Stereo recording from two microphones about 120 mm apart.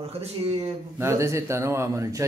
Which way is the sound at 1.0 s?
25° right (ahead or behind).